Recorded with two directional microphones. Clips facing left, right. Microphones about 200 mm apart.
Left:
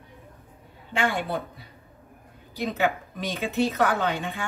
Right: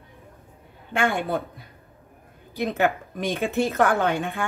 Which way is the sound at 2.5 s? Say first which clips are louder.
Right 3 dB; 50° right (ahead or behind).